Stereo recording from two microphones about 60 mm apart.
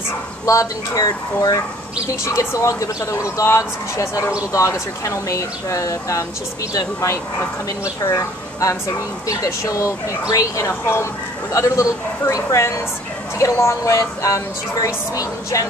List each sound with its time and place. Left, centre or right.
0.5 s speech: left
2.2 s speech: left
6.7 s speech: left
7.8 s a woman's voice: left
13.9 s speech: left